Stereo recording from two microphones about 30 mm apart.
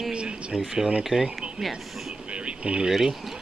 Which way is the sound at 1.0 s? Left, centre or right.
Centre.